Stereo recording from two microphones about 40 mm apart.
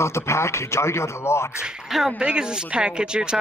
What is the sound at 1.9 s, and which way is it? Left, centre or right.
Speech, centre.